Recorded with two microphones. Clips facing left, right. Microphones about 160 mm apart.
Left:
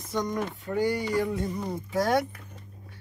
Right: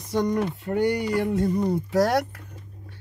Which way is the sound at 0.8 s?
70° right (ahead or behind).